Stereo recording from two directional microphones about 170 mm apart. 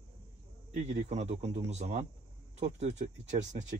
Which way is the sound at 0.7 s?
45° right (ahead or behind).